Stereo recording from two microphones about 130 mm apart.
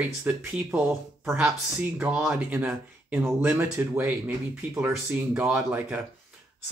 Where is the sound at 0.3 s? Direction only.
15° right (ahead or behind).